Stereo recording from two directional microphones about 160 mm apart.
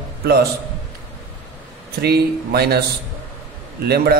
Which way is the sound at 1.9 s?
80° right.